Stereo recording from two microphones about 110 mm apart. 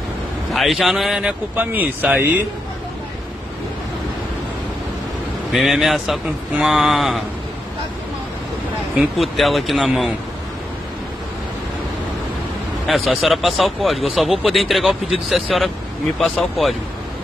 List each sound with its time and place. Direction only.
0.5 s speech: centre (ahead or behind); by 2.4 s 15° right (ahead or behind)
5.5 s speech: centre (ahead or behind)
8.9 s speech: centre (ahead or behind)
12.8 s speech: centre (ahead or behind)